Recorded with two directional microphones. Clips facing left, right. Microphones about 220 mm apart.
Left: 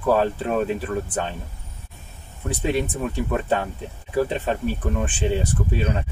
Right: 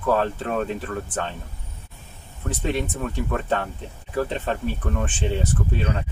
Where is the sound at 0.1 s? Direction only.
5° left (ahead or behind).